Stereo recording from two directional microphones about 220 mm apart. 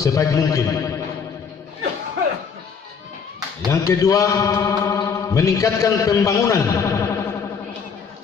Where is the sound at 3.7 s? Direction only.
15° left (ahead or behind).